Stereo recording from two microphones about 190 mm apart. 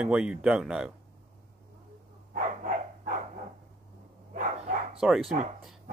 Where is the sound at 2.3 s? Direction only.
45° right (ahead or behind).